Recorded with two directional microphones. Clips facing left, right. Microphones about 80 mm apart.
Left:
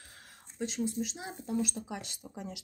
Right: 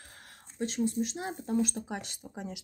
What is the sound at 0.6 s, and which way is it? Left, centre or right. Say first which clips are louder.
Speech: right 3 dB; right.